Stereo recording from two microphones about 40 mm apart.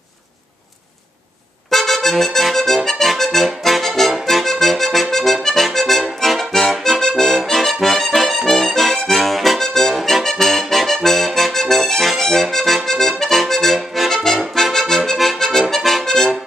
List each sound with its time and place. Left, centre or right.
1.7 s accordion: centre
9.9 s music: centre
10.2 s accordion: centre
15.7 s music: centre